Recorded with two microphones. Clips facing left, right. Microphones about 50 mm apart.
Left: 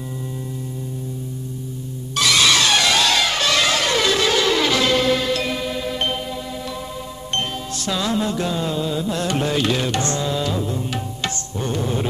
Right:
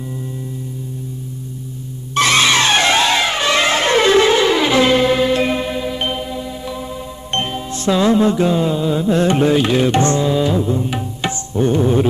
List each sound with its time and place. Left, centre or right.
2.1 s music: right
5.8 s music: centre
7.3 s music: right
11.2 s tabla: right